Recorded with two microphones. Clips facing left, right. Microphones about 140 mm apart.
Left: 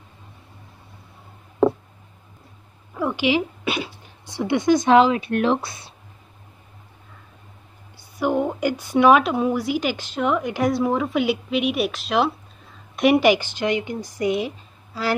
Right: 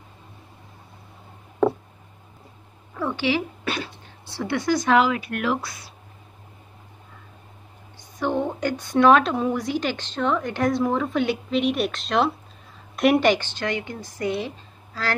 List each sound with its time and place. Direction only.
2.9 s speech: 10° left (ahead or behind)
8.2 s speech: 10° left (ahead or behind)